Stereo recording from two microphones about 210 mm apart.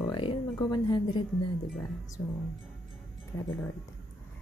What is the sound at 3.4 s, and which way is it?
Speech, 10° left (ahead or behind).